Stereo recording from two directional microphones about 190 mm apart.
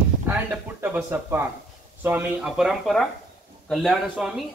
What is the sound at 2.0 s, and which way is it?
Speech, 5° right (ahead or behind).